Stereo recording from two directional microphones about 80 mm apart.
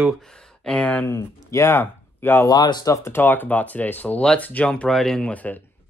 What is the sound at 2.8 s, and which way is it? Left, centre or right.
Speech, left.